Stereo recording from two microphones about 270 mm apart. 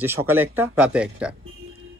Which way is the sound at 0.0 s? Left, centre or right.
Centre.